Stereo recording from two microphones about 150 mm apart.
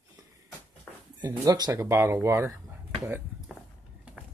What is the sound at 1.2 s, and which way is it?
Speech, 25° right (ahead or behind).